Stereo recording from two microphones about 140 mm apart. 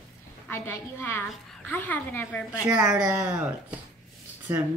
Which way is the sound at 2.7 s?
5° right (ahead or behind).